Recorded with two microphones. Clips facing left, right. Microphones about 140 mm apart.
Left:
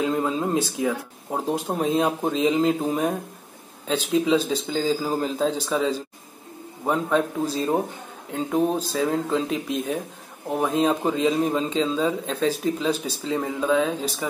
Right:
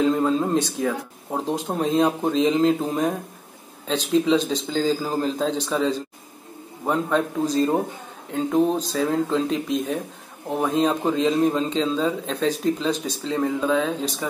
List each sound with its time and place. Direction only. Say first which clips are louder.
0.0 s a man's voice: right 3 dB; 5° left (ahead or behind)